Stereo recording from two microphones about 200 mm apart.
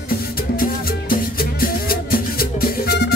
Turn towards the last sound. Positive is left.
turn(degrees=50)  # may be behind; listen again after turning